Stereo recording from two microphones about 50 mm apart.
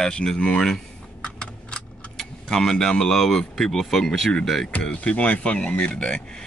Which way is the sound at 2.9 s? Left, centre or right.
Centre.